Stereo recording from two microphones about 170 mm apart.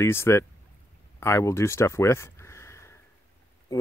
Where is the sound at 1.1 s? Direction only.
15° left (ahead or behind).